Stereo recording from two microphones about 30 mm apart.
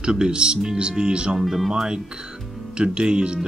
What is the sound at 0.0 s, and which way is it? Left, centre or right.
Speech, right.